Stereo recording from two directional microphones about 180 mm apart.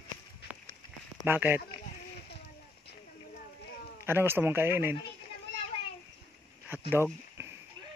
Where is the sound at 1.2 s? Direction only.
10° right (ahead or behind).